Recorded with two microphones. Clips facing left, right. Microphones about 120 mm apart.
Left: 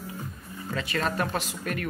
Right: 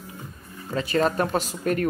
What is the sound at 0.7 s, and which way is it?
Speech, 30° right (ahead or behind).